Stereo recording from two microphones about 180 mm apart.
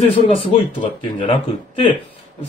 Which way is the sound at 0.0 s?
30° left (ahead or behind).